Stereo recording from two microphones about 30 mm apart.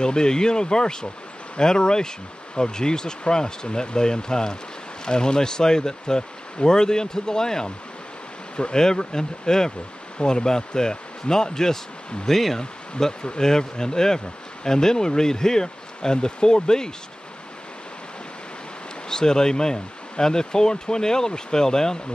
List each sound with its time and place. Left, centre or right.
0.0 s speech: left
8.7 s speech: left
12.3 s speech: centre
13.0 s speech: centre
19.0 s speech: left